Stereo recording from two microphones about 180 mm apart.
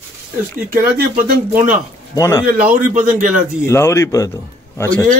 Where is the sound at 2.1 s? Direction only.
15° left (ahead or behind).